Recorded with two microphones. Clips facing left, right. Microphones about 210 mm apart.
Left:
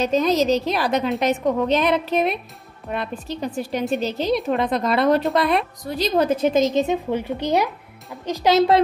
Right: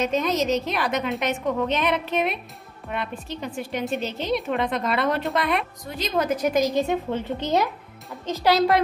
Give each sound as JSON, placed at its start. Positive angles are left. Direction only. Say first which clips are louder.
{"t": 0.0, "sound": "a woman's voice", "louder": "left 4 dB", "side_deg": 35}
{"t": 6.8, "sound": "a child's voice", "louder": "left 3 dB", "side_deg": 15}